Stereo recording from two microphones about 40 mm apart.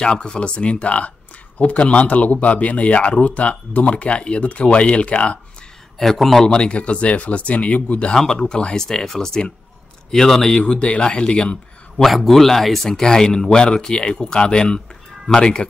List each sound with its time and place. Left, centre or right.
0.0 s speech: left
5.9 s speech: centre
6.4 s speech: left
8.1 s speech: centre
8.8 s speech: centre
10.6 s speech: left
12.0 s speech: centre
12.9 s speech: centre